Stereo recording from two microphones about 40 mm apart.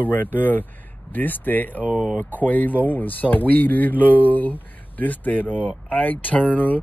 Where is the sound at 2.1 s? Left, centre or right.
Left.